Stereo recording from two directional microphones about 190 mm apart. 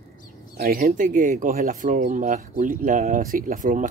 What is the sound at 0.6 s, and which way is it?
Speech, 50° right (ahead or behind).